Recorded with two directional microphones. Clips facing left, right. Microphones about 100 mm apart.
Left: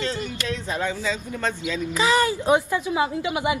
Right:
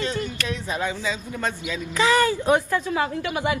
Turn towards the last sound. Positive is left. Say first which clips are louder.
# left 1 dB
turn(degrees=15)  # may be behind; listen again after turning